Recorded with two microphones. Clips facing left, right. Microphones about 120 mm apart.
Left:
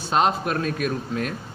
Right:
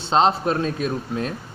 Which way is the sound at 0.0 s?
25° right (ahead or behind).